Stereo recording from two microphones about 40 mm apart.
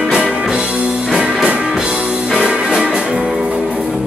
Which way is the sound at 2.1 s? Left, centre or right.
Centre.